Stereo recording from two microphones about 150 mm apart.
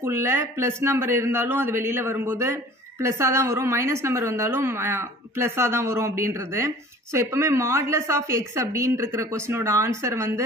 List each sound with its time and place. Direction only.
0.0 s speech: 15° right (ahead or behind)